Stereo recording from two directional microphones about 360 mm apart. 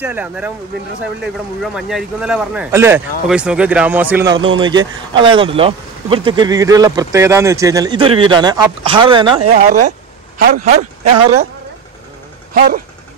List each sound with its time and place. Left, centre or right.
0.0 s a man's voice: centre; by 10.9 s right
12.5 s a man's voice: right